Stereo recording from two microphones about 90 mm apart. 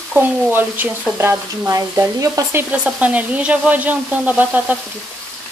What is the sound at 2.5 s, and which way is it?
Speech, 25° right (ahead or behind).